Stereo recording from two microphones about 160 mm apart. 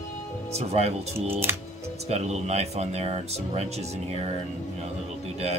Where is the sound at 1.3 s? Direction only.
15° right (ahead or behind).